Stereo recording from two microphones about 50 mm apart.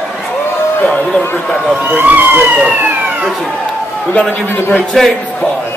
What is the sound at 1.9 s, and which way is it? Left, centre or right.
Speech, right.